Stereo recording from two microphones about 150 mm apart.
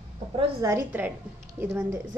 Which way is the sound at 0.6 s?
15° right (ahead or behind).